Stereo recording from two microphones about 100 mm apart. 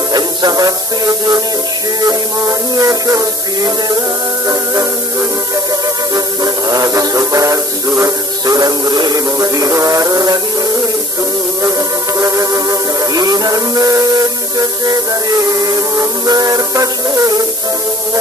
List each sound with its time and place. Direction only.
0.1 s music: 40° right (ahead or behind)
5.7 s music: 40° right (ahead or behind)
12.2 s music: 30° right (ahead or behind)